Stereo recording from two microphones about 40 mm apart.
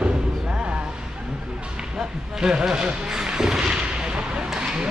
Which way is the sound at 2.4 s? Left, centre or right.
Centre.